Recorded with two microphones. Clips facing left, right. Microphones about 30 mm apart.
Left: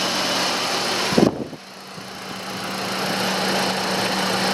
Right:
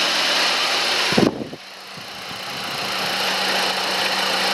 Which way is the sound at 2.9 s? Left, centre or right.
Right.